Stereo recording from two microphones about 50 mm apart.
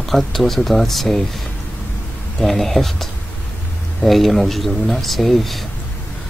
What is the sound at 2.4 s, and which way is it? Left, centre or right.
Speech, centre.